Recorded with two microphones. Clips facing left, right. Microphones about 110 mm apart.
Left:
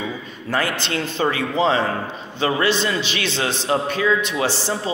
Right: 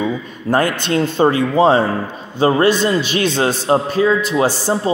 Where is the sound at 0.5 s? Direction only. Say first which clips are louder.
Right 7 dB; 45° right (ahead or behind).